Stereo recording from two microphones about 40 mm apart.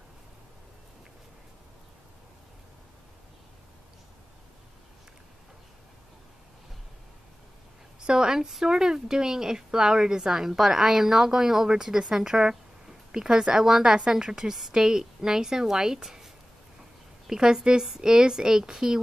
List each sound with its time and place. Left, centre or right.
8.0 s speech: centre
17.3 s speech: centre